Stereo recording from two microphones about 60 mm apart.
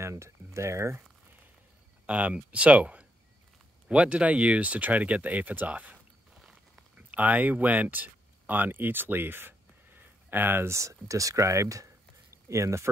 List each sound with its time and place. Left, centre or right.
0.0 s a sound: right
2.0 s speech: right
7.0 s speech: right
10.7 s speech: right